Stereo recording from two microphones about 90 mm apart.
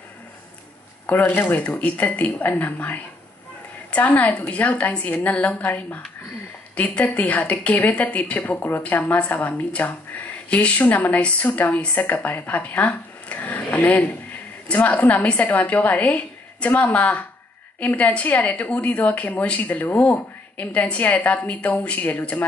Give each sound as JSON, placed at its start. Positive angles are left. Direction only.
{"t": 1.0, "sound": "a woman's voice", "side_deg": 20}